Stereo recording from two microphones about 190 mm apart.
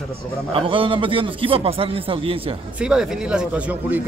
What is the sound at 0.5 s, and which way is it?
A man's voice, 25° right (ahead or behind).